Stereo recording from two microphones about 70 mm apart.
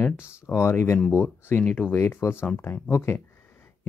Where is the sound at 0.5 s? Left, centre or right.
Left.